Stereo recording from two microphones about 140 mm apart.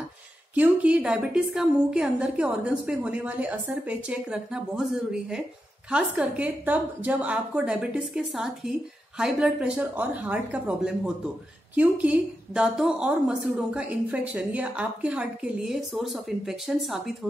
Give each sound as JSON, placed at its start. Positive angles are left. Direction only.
{"t": 0.6, "sound": "a woman's voice", "side_deg": -10}